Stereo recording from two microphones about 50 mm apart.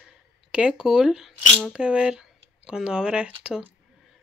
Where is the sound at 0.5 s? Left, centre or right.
Centre.